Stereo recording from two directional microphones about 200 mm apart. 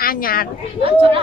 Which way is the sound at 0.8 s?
30° right (ahead or behind).